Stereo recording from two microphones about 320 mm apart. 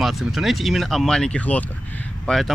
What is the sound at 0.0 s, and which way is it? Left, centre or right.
Speech, centre.